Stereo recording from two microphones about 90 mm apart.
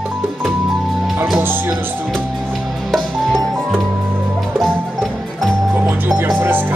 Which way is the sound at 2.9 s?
Centre (ahead or behind).